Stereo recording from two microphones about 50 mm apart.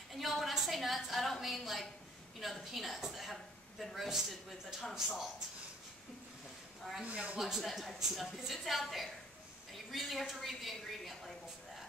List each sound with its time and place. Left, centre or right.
0.1 s a sound: centre
1.4 s a woman's voice: centre
7.1 s speech: right
7.3 s a woman's voice: centre